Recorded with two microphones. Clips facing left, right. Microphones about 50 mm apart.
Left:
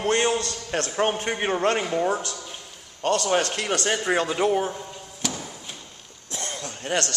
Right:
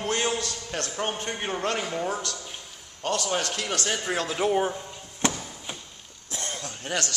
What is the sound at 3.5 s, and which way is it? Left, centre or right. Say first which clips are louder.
A man's voice: left 4 dB; centre.